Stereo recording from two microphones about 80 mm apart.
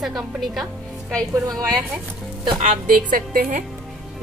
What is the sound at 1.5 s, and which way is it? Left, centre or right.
Speech, right.